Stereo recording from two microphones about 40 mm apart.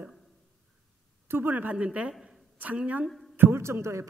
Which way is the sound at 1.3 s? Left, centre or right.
Right.